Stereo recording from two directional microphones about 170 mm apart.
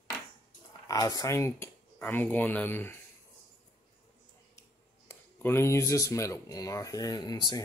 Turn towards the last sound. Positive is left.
turn(degrees=20)  # may be behind; listen again after turning